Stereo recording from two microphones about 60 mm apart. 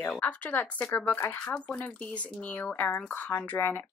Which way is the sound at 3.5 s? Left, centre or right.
Left.